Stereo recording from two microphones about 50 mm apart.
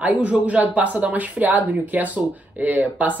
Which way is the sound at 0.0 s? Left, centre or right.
Right.